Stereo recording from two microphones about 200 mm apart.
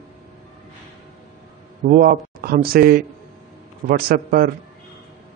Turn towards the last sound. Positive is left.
turn(degrees=-45)  # may be behind; listen again after turning